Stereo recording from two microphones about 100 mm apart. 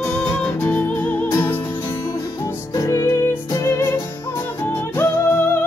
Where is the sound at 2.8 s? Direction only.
30° left (ahead or behind).